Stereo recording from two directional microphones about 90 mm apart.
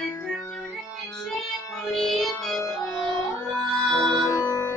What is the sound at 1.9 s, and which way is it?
Music, centre (ahead or behind).